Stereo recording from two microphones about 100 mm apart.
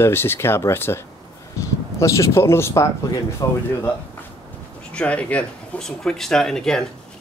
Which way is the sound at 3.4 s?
40° left (ahead or behind).